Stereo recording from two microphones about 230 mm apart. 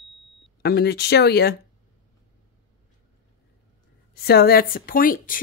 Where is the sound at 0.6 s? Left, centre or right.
Left.